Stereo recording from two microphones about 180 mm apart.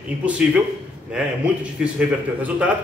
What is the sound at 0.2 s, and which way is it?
A man's voice, 5° right (ahead or behind).